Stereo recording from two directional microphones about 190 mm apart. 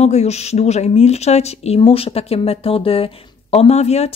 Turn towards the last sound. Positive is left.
turn(degrees=35)  # may be behind; listen again after turning